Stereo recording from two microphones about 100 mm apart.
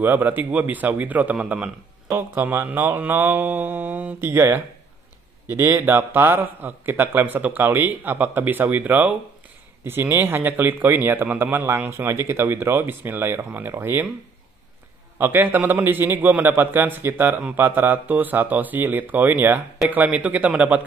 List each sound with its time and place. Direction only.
0.0 s a man's voice: 20° right (ahead or behind)
15.1 s a man's voice: 20° right (ahead or behind)